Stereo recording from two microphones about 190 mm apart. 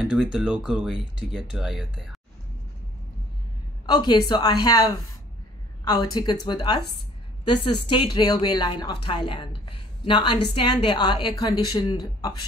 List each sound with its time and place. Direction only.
0.0 s speech: 5° right (ahead or behind)
3.8 s a woman's voice: 25° left (ahead or behind)
6.1 s a woman's voice: 20° left (ahead or behind)